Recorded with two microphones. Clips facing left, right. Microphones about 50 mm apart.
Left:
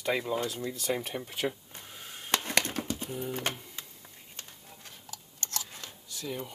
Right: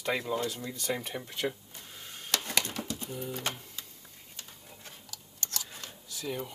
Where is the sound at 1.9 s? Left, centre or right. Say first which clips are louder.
Left 3 dB; centre.